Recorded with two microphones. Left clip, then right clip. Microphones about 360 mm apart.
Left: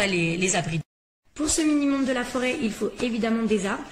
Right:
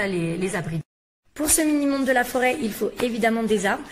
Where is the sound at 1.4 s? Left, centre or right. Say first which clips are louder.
Right 1 dB; centre.